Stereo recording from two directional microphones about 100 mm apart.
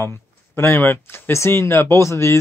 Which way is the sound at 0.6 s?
20° left (ahead or behind).